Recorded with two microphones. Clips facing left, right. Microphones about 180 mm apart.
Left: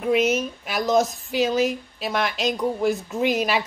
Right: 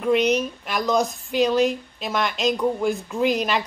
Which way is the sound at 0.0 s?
5° left (ahead or behind).